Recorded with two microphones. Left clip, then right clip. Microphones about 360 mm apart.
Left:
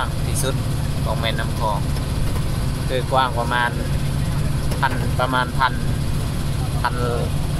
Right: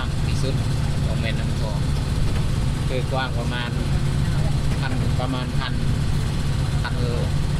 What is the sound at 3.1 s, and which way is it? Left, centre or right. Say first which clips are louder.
Speech: left 11 dB; left.